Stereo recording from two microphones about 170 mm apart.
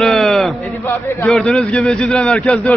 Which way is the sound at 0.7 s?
15° left (ahead or behind).